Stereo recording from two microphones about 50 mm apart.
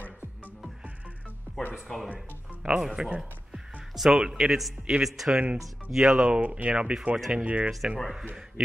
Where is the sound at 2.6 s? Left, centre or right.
Centre.